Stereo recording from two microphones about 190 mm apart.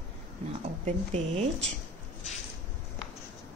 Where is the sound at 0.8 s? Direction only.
35° right (ahead or behind).